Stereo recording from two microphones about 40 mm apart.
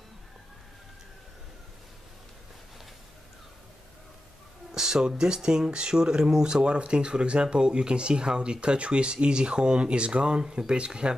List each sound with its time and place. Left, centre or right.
4.7 s speech: centre